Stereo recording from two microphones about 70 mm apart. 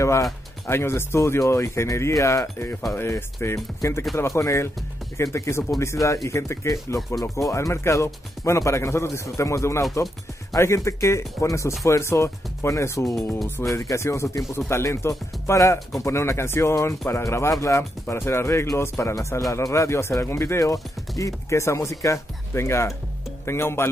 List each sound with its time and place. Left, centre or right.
0.0 s speech: left
18.0 s speech: left